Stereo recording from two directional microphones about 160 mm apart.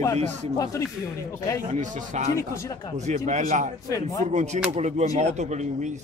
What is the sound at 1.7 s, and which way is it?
Speech, 45° right (ahead or behind).